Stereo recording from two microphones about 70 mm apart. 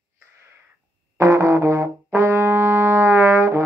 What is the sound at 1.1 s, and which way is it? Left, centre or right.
Brass instrument, right.